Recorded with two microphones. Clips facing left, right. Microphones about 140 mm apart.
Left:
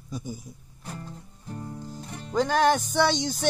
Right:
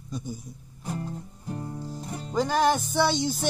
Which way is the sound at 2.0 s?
35° right (ahead or behind).